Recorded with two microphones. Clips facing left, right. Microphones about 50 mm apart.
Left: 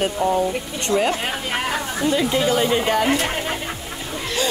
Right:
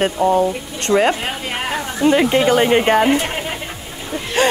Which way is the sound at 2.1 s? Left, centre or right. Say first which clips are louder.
Right 6 dB; right.